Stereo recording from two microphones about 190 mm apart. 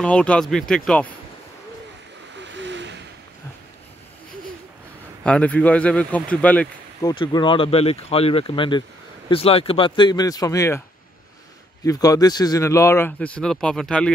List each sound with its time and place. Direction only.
0.0 s speech: 5° left (ahead or behind)
2.4 s a sound: 70° right (ahead or behind)
5.2 s speech: 5° left (ahead or behind)
7.0 s speech: 20° left (ahead or behind)
11.8 s speech: 15° left (ahead or behind)